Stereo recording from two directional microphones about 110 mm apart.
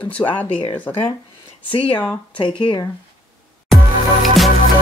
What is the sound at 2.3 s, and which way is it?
Speech, 45° left (ahead or behind).